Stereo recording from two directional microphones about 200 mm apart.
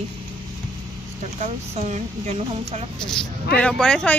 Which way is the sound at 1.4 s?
35° right (ahead or behind).